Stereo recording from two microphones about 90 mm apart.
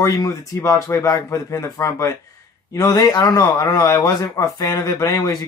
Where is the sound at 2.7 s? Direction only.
50° left (ahead or behind).